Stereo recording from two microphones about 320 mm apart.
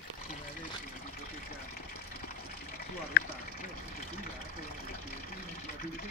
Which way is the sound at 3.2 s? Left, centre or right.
Left.